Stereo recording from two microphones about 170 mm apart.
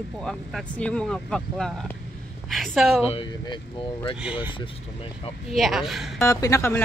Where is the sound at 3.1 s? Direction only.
30° left (ahead or behind).